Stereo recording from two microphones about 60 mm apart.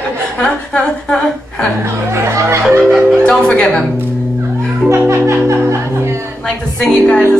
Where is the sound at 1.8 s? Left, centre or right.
Right.